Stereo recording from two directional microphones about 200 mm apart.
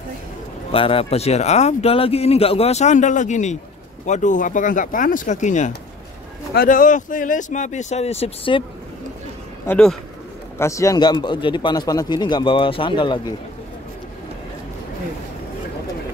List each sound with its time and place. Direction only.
0.7 s speech: 30° left (ahead or behind)
9.7 s speech: 5° left (ahead or behind)
10.6 s speech: 15° left (ahead or behind)